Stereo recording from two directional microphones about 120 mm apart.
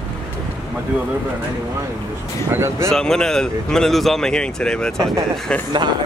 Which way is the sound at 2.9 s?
5° left (ahead or behind).